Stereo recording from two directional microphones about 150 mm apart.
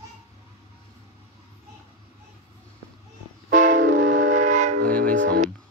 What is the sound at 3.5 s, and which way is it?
Music, 60° right (ahead or behind).